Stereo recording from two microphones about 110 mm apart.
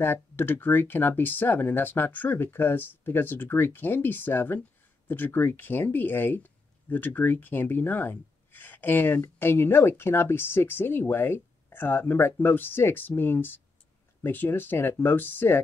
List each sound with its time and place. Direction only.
0.0 s speech: 20° left (ahead or behind)